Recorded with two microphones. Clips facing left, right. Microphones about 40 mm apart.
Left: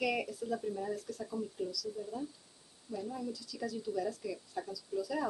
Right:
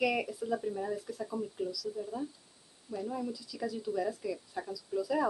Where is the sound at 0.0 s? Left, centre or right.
Centre.